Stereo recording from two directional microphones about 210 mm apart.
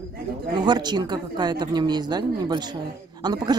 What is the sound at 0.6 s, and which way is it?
Speech, 20° right (ahead or behind).